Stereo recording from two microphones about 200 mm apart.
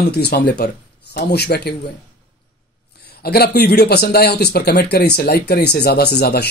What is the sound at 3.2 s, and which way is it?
Speech, 50° left (ahead or behind).